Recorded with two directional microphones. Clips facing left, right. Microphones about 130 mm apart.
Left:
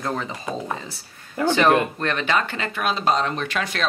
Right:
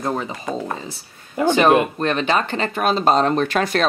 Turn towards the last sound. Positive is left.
turn(degrees=-40)  # may be behind; listen again after turning